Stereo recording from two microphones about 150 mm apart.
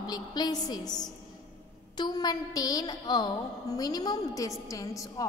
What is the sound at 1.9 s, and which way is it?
A woman's voice, 30° left (ahead or behind).